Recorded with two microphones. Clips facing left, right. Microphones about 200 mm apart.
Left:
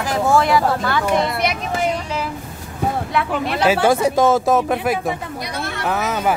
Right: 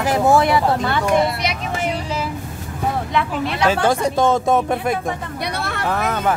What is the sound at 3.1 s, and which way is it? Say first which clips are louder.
Speech: left 1 dB; centre (ahead or behind).